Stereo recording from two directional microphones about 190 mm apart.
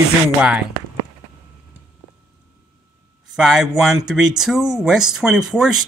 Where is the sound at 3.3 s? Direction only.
Centre (ahead or behind).